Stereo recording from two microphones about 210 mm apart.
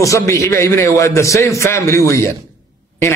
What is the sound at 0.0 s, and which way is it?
A man's voice, 15° left (ahead or behind).